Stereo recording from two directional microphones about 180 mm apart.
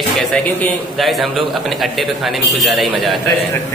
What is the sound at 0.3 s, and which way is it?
A man's voice, centre (ahead or behind).